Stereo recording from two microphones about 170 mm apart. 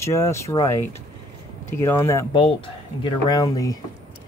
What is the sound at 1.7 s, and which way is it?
Speech, 15° left (ahead or behind).